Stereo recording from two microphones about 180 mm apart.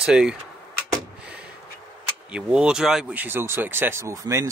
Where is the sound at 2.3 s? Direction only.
5° right (ahead or behind).